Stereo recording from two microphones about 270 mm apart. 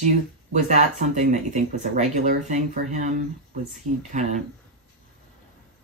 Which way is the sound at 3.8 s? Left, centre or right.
Right.